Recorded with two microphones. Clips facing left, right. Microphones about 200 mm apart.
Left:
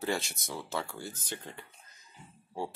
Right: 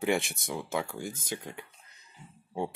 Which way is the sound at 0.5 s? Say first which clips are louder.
Right 3 dB; 15° right (ahead or behind).